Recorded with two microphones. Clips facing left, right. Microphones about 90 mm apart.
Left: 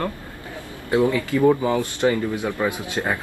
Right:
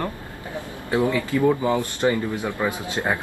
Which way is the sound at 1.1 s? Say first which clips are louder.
Left 1 dB; 20° right (ahead or behind).